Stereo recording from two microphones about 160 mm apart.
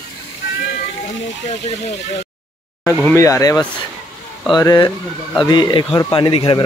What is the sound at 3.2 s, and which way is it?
Speech, 20° left (ahead or behind).